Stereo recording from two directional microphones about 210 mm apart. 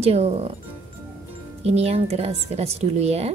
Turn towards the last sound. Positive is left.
turn(degrees=-30)  # may be behind; listen again after turning